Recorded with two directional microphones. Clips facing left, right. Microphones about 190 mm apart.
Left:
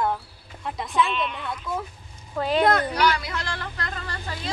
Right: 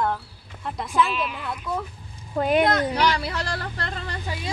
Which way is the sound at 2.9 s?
30° right (ahead or behind).